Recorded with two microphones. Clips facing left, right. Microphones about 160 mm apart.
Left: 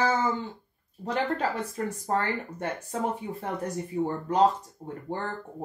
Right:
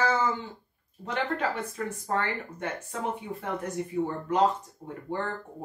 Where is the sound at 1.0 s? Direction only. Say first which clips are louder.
Left 2 dB; 35° left (ahead or behind).